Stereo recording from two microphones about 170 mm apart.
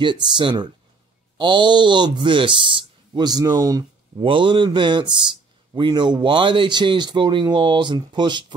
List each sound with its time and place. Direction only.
0.0 s speech: 25° right (ahead or behind)